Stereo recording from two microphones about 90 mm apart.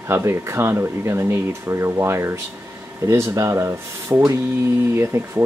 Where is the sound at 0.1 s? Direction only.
30° right (ahead or behind).